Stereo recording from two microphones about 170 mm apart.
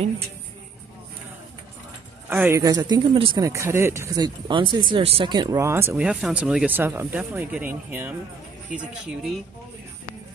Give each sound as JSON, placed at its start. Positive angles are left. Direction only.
{"t": 2.2, "sound": "speech", "side_deg": -10}
{"t": 3.4, "sound": "speech", "side_deg": -15}